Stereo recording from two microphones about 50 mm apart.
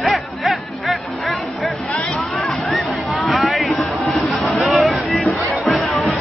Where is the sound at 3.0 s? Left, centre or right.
Centre.